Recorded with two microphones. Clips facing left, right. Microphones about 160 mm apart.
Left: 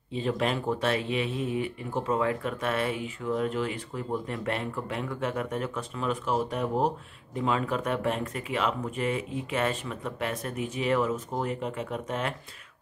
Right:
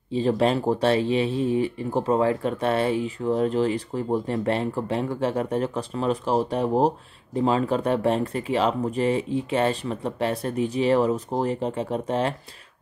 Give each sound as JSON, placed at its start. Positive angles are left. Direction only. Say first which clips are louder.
{"t": 0.1, "sound": "speech", "louder": "right 7 dB", "side_deg": -35}